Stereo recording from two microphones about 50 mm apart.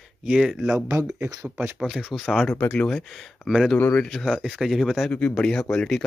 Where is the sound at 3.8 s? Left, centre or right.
Left.